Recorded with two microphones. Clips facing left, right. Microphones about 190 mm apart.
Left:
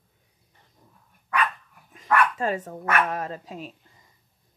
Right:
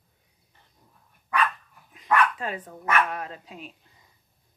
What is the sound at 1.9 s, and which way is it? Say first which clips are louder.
Speech: left 1 dB; 45° left (ahead or behind).